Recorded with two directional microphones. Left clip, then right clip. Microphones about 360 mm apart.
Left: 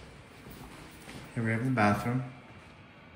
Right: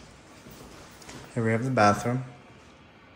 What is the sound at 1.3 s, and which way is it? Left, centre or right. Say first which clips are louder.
Speech: right 6 dB; centre.